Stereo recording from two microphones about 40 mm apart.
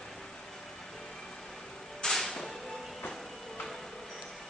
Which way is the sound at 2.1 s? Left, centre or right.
Centre.